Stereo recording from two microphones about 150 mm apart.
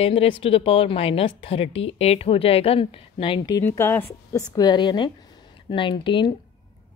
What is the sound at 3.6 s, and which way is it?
A woman's voice, 15° left (ahead or behind).